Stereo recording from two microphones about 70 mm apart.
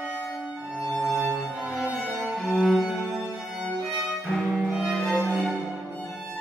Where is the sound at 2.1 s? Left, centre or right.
Centre.